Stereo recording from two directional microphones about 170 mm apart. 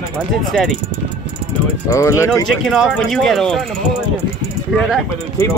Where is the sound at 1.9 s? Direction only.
20° left (ahead or behind).